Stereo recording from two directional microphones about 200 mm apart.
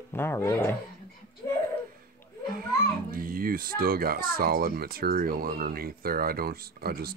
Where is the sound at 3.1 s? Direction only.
45° right (ahead or behind).